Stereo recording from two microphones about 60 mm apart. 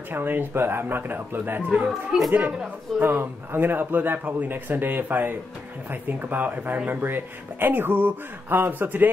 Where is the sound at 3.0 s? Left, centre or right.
Right.